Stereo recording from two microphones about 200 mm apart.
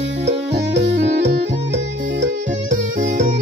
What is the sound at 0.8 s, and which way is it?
Music, 60° right (ahead or behind).